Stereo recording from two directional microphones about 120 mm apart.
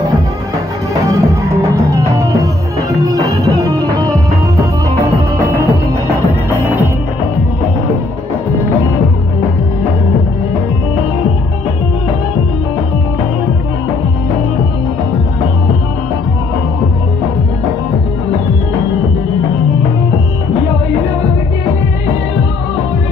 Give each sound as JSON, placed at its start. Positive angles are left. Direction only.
{"t": 1.0, "sound": "music", "side_deg": -25}